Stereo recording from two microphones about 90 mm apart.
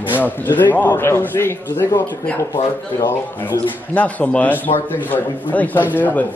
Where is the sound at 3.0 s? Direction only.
25° left (ahead or behind).